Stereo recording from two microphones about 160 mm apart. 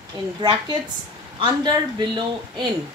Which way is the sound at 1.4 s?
30° right (ahead or behind).